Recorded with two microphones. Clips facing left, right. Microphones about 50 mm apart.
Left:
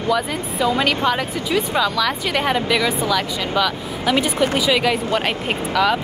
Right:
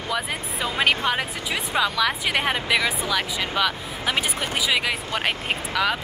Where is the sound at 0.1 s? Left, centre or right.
Centre.